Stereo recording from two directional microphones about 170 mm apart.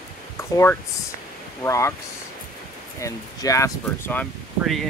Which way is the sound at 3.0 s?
20° left (ahead or behind).